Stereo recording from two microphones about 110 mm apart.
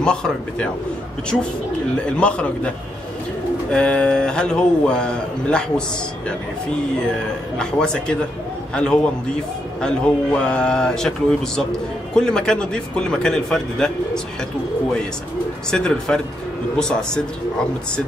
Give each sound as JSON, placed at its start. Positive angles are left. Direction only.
{"t": 0.0, "sound": "a man's voice", "side_deg": 5}
{"t": 2.0, "sound": "a man's voice", "side_deg": 10}
{"t": 3.7, "sound": "a man's voice", "side_deg": 10}
{"t": 15.7, "sound": "a man's voice", "side_deg": 5}